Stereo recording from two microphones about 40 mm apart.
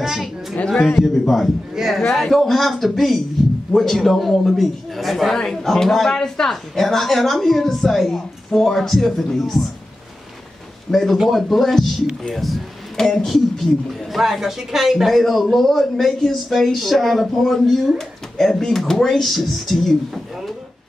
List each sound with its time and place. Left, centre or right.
0.0 s a sound: centre
0.7 s a man's voice: centre
1.0 s a man's voice: centre
2.2 s a man's voice: centre
10.9 s a man's voice: centre
14.1 s speech: centre